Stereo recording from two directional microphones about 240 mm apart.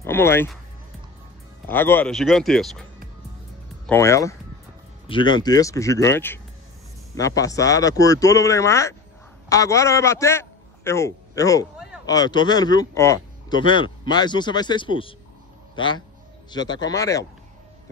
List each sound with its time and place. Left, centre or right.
0.0 s speech: centre
1.7 s speech: centre
3.8 s a man's voice: centre